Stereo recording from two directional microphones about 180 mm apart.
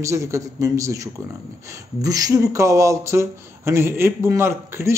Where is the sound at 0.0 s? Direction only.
15° right (ahead or behind).